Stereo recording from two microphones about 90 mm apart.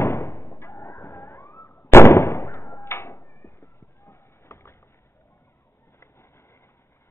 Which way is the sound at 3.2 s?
50° left (ahead or behind).